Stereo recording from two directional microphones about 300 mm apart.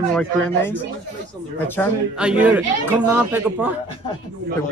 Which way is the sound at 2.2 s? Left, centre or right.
Centre.